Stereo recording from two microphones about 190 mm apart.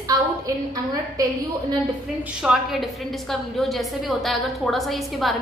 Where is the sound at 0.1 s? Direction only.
15° right (ahead or behind).